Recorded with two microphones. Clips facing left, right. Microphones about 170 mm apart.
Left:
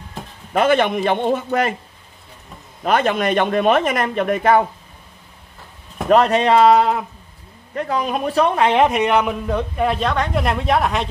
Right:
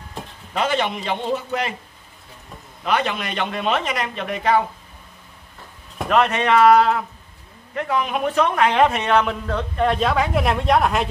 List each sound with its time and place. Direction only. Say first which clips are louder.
0.5 s speech: left 6 dB; 50° left (ahead or behind)
2.8 s speech: left 5 dB; 45° left (ahead or behind)
6.0 s speech: left 4 dB; 35° left (ahead or behind)
7.7 s a man's voice: left 1 dB; 35° left (ahead or behind); by 9.9 s 10° left (ahead or behind)
9.9 s speech: right 1 dB; 5° right (ahead or behind)